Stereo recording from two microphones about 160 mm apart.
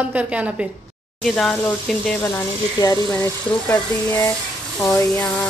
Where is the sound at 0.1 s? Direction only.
10° right (ahead or behind).